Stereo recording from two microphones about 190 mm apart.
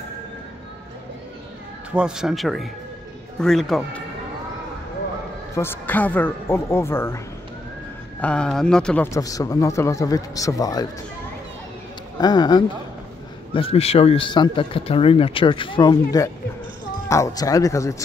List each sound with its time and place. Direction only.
2.0 s speech: 5° right (ahead or behind)
5.5 s a man's voice: 10° left (ahead or behind)
8.2 s a man's voice: 5° left (ahead or behind)
12.2 s a man's voice: 20° left (ahead or behind)